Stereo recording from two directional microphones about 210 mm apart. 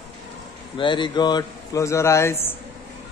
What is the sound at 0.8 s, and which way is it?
Speech, 20° left (ahead or behind).